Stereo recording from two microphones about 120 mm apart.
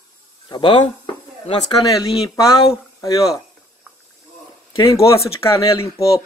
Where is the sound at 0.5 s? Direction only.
40° left (ahead or behind).